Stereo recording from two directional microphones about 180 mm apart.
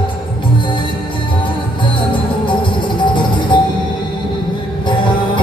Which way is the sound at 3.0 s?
25° left (ahead or behind).